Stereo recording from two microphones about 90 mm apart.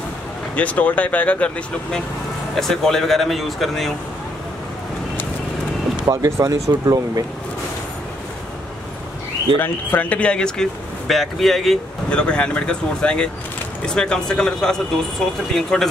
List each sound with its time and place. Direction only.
0.6 s speech: 15° left (ahead or behind)
6.0 s speech: 35° right (ahead or behind)
9.6 s speech: 20° left (ahead or behind)